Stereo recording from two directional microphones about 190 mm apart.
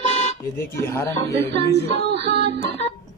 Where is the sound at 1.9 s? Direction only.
65° right (ahead or behind).